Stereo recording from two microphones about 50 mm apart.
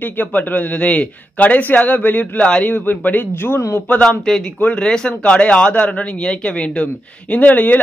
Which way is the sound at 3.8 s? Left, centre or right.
Left.